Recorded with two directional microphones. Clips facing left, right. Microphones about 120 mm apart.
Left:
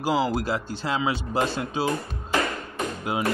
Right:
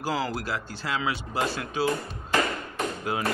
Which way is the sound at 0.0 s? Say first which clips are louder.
Left 5 dB; 15° left (ahead or behind).